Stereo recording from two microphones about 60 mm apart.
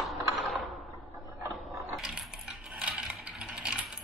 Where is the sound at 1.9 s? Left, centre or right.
Centre.